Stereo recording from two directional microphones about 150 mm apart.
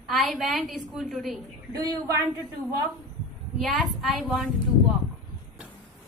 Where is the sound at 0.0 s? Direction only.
Centre (ahead or behind).